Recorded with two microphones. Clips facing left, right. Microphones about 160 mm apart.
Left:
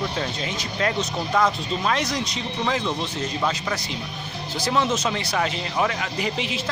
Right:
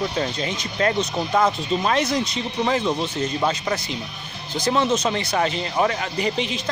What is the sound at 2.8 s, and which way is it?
Speech, 20° right (ahead or behind).